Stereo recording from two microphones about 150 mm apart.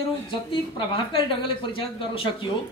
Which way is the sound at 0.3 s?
35° left (ahead or behind).